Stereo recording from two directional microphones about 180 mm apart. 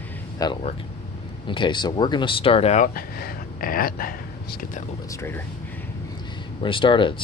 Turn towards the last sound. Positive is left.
turn(degrees=25)  # may be behind; listen again after turning